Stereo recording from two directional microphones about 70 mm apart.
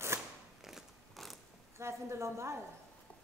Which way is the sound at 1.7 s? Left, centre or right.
Right.